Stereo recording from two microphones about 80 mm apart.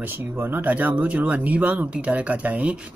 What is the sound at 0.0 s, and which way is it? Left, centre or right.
Speech, right.